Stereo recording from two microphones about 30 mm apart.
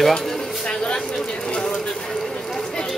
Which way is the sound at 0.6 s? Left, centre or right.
Left.